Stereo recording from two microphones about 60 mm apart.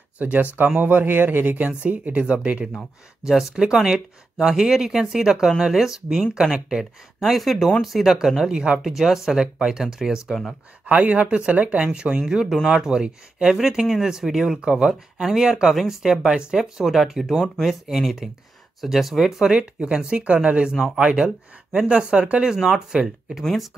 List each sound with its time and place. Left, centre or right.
0.2 s speech: right
1.7 s speech: centre
3.3 s speech: centre
8.7 s speech: centre
10.9 s speech: right
13.6 s speech: centre
19.5 s speech: centre
23.4 s speech: centre